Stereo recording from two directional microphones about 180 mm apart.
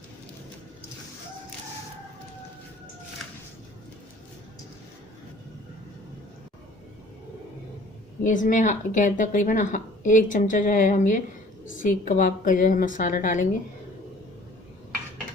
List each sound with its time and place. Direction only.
8.2 s speech: 45° left (ahead or behind)